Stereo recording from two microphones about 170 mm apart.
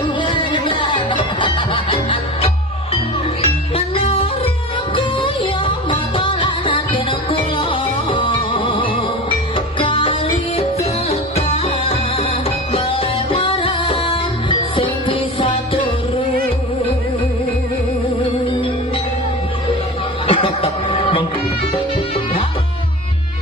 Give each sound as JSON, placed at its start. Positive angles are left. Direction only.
{"t": 0.2, "sound": "music", "side_deg": 30}
{"t": 20.2, "sound": "music", "side_deg": 35}